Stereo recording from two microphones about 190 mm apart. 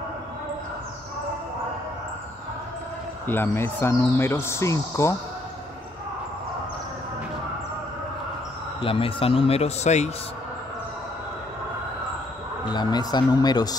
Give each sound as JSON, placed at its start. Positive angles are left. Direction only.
{"t": 3.3, "sound": "speech", "side_deg": 10}
{"t": 8.8, "sound": "speech", "side_deg": 30}
{"t": 12.6, "sound": "speech", "side_deg": 20}